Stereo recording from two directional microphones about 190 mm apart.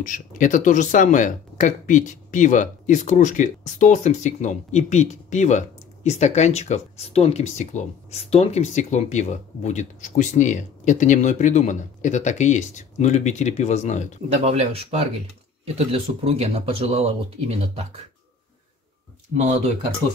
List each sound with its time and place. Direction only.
0.0 s speech: 40° left (ahead or behind)
14.4 s speech: 35° right (ahead or behind)